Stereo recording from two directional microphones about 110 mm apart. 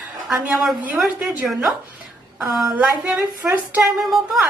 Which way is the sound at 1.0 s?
Centre (ahead or behind).